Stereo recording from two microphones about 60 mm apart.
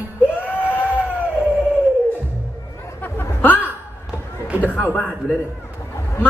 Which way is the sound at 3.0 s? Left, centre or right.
Left.